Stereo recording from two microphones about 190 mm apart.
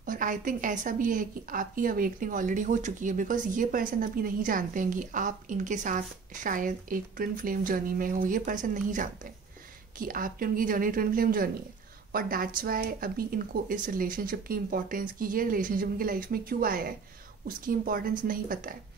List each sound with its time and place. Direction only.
0.0 s a woman's voice: 45° right (ahead or behind)